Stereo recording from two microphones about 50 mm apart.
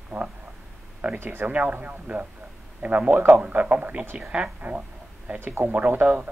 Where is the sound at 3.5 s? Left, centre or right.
Right.